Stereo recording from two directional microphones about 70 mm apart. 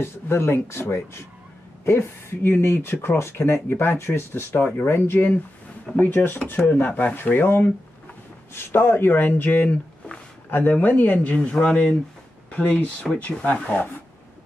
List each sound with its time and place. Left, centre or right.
0.0 s speech: left